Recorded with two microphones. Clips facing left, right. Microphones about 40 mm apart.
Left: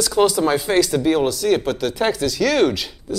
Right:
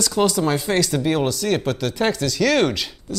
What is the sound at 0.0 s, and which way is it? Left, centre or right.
A man's voice, centre.